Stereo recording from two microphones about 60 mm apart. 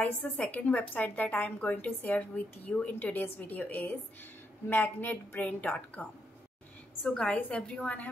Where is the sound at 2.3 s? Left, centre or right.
Centre.